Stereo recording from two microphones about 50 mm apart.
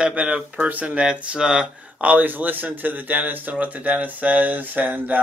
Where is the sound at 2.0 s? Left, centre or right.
Right.